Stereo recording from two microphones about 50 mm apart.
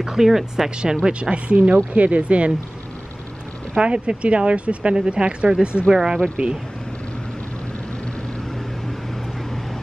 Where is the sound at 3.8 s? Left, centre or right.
Right.